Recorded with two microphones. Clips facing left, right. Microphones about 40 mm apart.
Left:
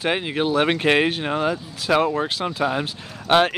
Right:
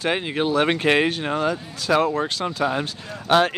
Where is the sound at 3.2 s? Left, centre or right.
Centre.